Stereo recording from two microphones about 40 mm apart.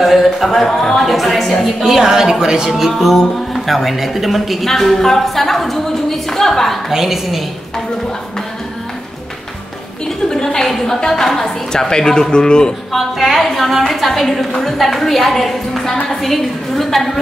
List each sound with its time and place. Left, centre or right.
0.0 s speech: centre
2.7 s a woman's voice: centre
6.9 s a woman's voice: centre
10.0 s a woman's voice: centre
12.9 s a woman's voice: centre